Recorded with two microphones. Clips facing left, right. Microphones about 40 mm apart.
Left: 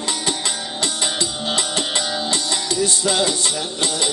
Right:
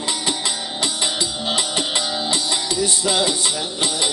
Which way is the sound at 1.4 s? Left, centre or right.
Centre.